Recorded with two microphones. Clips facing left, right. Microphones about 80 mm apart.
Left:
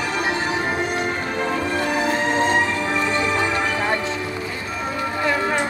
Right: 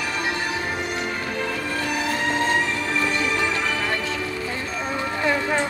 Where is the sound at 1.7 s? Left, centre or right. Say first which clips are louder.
Left 3 dB; left.